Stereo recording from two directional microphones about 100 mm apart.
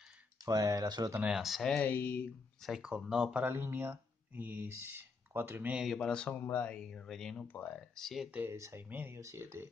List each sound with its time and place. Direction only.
0.5 s speech: 35° right (ahead or behind)
1.2 s speech: 5° right (ahead or behind)
1.8 s speech: 20° left (ahead or behind)
2.6 s speech: 5° right (ahead or behind)
3.4 s speech: 20° right (ahead or behind)
5.9 s speech: 10° left (ahead or behind)
7.4 s speech: 15° left (ahead or behind)
8.3 s speech: 20° right (ahead or behind)
8.5 s speech: 30° right (ahead or behind)
8.8 s speech: 20° right (ahead or behind)